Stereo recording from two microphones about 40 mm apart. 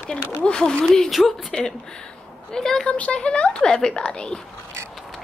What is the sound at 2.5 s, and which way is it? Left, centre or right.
Speech, centre.